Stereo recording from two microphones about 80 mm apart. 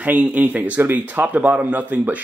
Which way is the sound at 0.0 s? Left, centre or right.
Centre.